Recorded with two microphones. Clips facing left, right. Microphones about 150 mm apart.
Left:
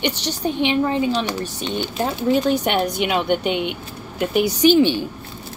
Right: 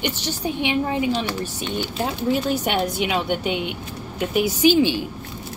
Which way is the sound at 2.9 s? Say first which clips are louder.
Left 3 dB; 60° left (ahead or behind).